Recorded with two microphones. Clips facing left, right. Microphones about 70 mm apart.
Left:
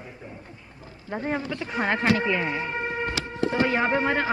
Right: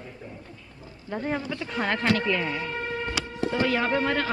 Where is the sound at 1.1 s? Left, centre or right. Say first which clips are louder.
Left 1 dB; centre.